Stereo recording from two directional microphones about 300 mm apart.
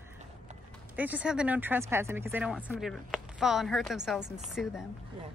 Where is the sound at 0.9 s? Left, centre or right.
Centre.